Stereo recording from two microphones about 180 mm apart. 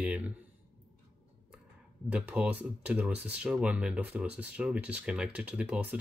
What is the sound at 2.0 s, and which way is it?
Speech, 5° right (ahead or behind).